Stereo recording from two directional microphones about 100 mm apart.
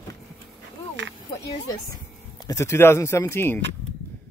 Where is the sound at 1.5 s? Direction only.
35° left (ahead or behind).